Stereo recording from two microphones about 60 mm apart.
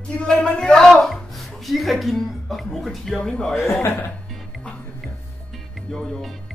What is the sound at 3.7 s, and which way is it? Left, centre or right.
Speech, left.